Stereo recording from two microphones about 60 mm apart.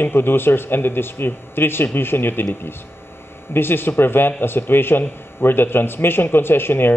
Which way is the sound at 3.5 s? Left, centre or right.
Left.